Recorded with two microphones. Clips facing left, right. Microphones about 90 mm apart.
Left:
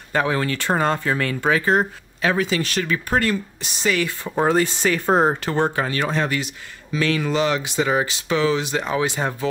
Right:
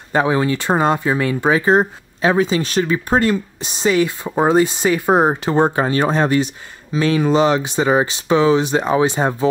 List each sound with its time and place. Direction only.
0.1 s speech: 20° right (ahead or behind)